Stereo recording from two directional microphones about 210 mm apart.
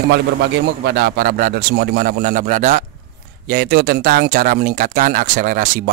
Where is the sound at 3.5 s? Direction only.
50° right (ahead or behind).